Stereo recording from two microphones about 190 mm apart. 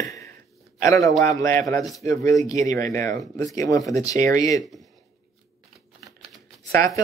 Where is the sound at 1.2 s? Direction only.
15° left (ahead or behind).